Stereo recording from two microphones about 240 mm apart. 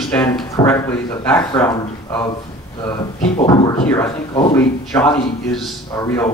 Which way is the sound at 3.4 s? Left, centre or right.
Centre.